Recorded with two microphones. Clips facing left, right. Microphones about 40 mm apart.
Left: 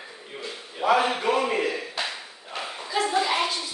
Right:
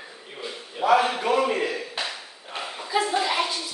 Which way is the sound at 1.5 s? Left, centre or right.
Centre.